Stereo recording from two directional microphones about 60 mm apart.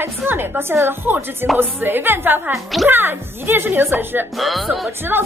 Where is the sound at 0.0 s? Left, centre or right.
Right.